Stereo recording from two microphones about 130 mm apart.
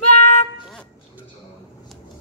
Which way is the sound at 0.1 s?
65° left (ahead or behind).